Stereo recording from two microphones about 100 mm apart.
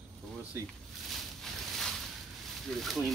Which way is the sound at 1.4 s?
5° left (ahead or behind).